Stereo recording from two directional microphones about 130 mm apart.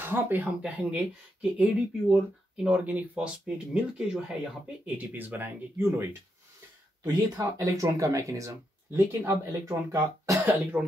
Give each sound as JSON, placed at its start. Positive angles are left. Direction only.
{"t": 0.0, "sound": "speech", "side_deg": -15}
{"t": 7.3, "sound": "speech", "side_deg": -25}